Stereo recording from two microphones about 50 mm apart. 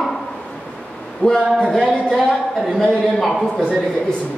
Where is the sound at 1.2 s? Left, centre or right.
Left.